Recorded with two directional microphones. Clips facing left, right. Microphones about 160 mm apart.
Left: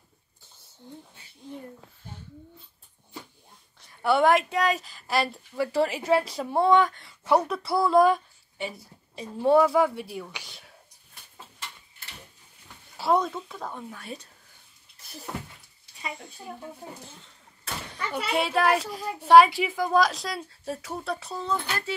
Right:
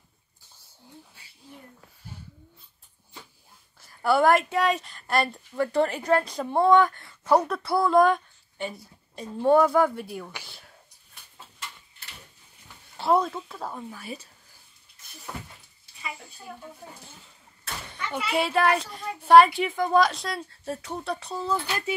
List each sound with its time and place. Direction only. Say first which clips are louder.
0.8 s a sound: left 6 dB; 5° right (ahead or behind)
3.8 s speech: right 1 dB; centre (ahead or behind)
10.3 s whispering: right 1 dB; 15° left (ahead or behind)
12.9 s speech: right 1 dB; centre (ahead or behind)
18.1 s speech: right 1 dB; centre (ahead or behind)